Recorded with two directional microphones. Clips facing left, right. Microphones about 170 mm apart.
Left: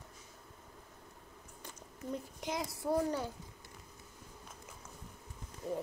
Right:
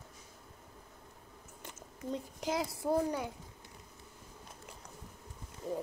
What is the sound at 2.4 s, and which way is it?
Speech, 25° right (ahead or behind).